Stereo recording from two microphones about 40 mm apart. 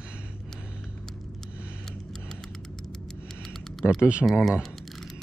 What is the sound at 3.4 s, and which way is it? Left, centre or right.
Typing, centre.